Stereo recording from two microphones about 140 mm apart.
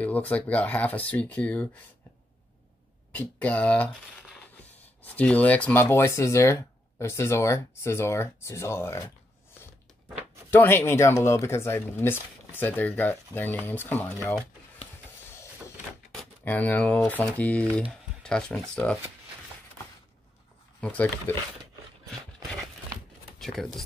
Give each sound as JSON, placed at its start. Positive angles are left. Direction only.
{"t": 0.0, "sound": "speech", "side_deg": 10}
{"t": 3.1, "sound": "speech", "side_deg": 10}
{"t": 5.0, "sound": "speech", "side_deg": 10}
{"t": 10.5, "sound": "speech", "side_deg": 15}
{"t": 16.4, "sound": "speech", "side_deg": 10}
{"t": 20.8, "sound": "speech", "side_deg": 10}
{"t": 23.4, "sound": "speech", "side_deg": 0}